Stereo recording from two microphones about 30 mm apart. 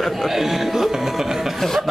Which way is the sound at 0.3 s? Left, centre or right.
Centre.